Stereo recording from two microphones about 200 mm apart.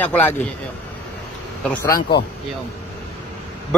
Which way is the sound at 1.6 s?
10° left (ahead or behind).